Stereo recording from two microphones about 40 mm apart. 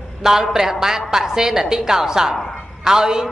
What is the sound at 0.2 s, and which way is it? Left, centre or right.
A man's voice, centre.